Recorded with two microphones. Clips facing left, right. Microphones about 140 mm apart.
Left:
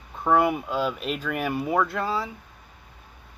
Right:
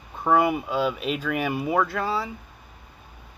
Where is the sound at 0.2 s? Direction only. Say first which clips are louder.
Even; 5° right (ahead or behind).